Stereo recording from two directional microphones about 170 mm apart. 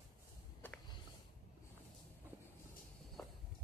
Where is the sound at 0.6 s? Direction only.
10° left (ahead or behind).